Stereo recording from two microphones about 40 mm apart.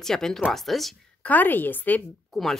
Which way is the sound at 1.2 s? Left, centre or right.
Left.